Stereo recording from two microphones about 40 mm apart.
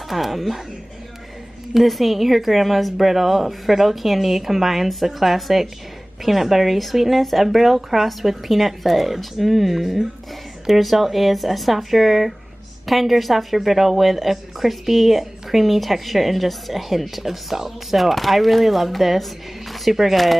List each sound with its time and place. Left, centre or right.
0.1 s speech: centre
1.7 s speech: centre